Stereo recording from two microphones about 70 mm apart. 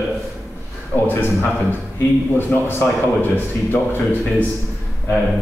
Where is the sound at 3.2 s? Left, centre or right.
Left.